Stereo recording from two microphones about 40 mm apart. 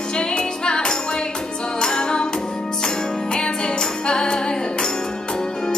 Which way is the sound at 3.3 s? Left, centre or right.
Left.